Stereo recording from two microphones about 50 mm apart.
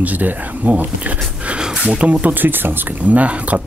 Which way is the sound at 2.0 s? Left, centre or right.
Right.